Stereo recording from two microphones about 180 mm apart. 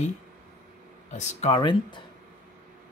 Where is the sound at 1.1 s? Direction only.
40° left (ahead or behind).